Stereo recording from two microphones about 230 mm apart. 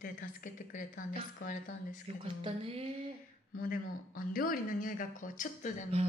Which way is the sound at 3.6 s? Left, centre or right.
Left.